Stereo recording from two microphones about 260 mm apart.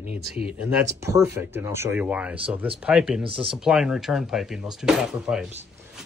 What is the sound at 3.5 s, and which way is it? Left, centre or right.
Speech, centre.